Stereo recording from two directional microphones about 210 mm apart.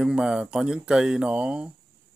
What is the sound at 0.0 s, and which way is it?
Speech, 5° right (ahead or behind).